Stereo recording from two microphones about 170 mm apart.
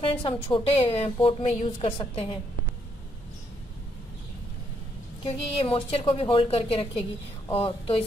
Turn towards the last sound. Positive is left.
turn(degrees=35)  # may be behind; listen again after turning